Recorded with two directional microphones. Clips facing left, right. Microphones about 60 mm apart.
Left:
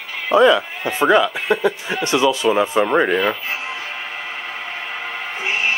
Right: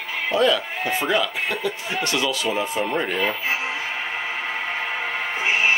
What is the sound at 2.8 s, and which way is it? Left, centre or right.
Speech, left.